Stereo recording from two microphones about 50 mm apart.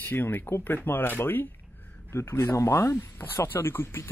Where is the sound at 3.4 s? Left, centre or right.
Left.